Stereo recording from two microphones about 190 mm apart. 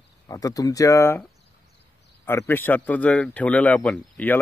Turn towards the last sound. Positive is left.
turn(degrees=5)  # may be behind; listen again after turning